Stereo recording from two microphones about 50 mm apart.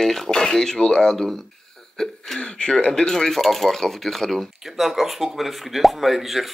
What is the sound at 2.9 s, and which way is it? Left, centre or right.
Speech, centre.